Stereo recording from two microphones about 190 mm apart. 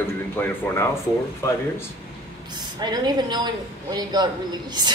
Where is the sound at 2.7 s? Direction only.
20° right (ahead or behind).